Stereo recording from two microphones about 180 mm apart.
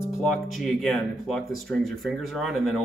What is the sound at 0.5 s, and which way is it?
Speech, centre (ahead or behind).